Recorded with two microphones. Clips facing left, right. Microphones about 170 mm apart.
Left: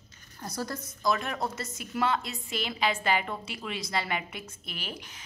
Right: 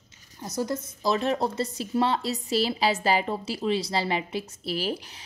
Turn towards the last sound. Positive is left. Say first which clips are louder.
# right 11 dB
turn(degrees=-35)  # may be behind; listen again after turning